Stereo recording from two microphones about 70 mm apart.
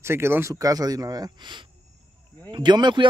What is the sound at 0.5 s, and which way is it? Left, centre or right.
Speech, right.